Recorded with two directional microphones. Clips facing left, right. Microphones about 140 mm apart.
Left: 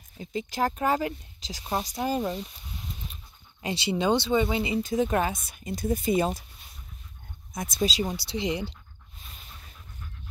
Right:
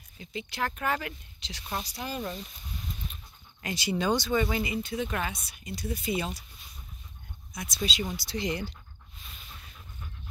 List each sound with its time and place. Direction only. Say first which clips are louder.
0.2 s speech: left 6 dB; 40° left (ahead or behind)
3.6 s speech: left 3 dB; 25° left (ahead or behind)
4.8 s speech: left 7 dB; 40° left (ahead or behind)
7.5 s speech: left 6 dB; 50° left (ahead or behind)
7.9 s speech: left 3 dB; 35° left (ahead or behind)